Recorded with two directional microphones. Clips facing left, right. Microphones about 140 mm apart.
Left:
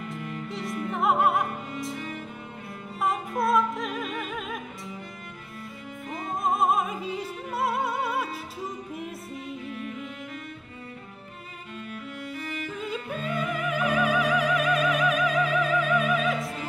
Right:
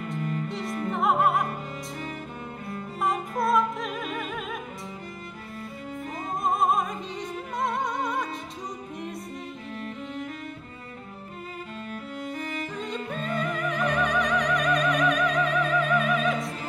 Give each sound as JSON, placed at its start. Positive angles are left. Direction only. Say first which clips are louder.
{"t": 0.5, "sound": "music", "louder": "right 1 dB", "side_deg": 0}
{"t": 0.9, "sound": "opera", "louder": "even", "side_deg": 0}
{"t": 3.0, "sound": "music", "louder": "even", "side_deg": 0}
{"t": 6.4, "sound": "opera", "louder": "even", "side_deg": 0}
{"t": 8.9, "sound": "music", "louder": "right 1 dB", "side_deg": 5}
{"t": 9.7, "sound": "music", "louder": "even", "side_deg": -40}
{"t": 11.9, "sound": "music", "louder": "right 2 dB", "side_deg": -40}
{"t": 12.7, "sound": "yodeling", "louder": "even", "side_deg": 5}
{"t": 13.4, "sound": "opera", "louder": "even", "side_deg": 5}